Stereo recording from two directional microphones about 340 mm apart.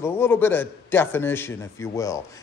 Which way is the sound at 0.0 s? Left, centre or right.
Centre.